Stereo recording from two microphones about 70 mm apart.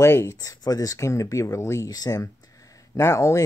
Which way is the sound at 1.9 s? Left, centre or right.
Left.